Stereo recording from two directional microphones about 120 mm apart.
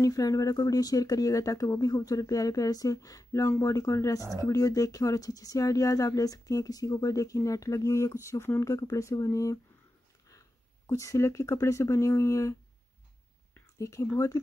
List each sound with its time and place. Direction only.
0.0 s speech: 30° left (ahead or behind)
10.9 s speech: 25° left (ahead or behind)
13.7 s speech: 25° left (ahead or behind)